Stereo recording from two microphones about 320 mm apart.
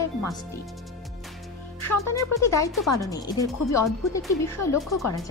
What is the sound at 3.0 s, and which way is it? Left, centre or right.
Speech, centre.